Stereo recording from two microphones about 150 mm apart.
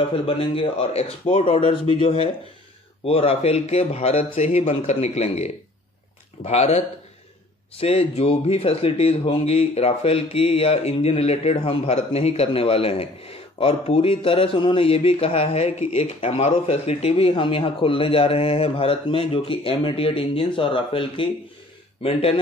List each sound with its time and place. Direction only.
0.1 s a man's voice: 40° left (ahead or behind)
7.8 s speech: 40° left (ahead or behind)